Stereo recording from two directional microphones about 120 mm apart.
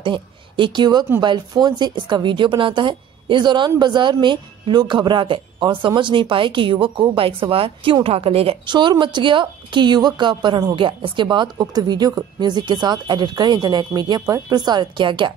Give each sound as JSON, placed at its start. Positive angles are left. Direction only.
{"t": 0.0, "sound": "a woman's voice", "side_deg": -45}
{"t": 8.7, "sound": "a woman's voice", "side_deg": -40}